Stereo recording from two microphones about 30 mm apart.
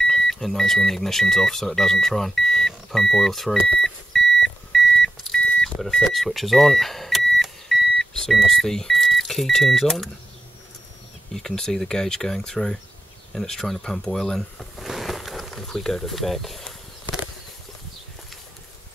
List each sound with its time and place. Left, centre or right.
0.0 s speech: centre
3.6 s beep: centre
5.4 s vehicle: left
5.8 s speech: centre
7.1 s power windows: centre
8.0 s vehicle: centre
8.5 s speech: centre
8.9 s beep: centre
9.5 s speech: centre
11.3 s speech: centre
14.9 s boat: centre
15.5 s a sound: centre
16.1 s speech: centre